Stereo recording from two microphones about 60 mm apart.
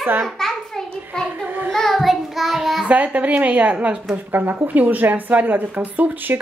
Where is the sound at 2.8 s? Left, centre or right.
Right.